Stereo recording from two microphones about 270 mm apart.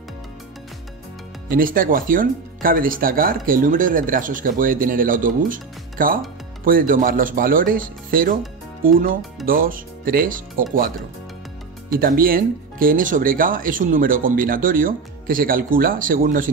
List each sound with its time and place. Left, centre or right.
1.5 s speech: right
11.9 s speech: right